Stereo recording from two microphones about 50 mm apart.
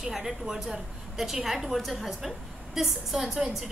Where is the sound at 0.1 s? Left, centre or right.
Centre.